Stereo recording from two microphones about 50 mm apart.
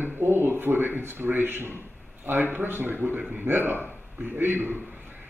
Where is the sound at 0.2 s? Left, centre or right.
Right.